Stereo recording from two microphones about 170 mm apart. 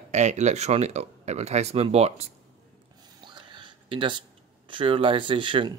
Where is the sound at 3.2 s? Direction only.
25° right (ahead or behind).